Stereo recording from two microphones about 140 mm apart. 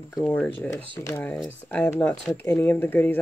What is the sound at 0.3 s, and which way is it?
Speech, 10° left (ahead or behind).